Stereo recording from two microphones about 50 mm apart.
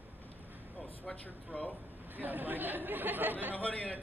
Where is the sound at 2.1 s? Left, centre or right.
Right.